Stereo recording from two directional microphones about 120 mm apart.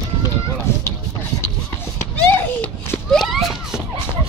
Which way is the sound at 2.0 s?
20° left (ahead or behind).